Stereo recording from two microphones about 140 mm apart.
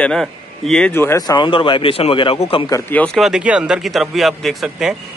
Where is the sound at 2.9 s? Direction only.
10° left (ahead or behind).